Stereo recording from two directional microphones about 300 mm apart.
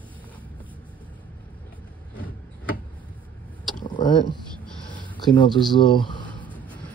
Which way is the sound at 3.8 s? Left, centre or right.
Centre.